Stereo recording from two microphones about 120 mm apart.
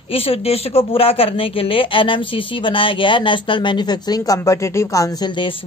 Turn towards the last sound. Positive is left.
turn(degrees=40)  # may be behind; listen again after turning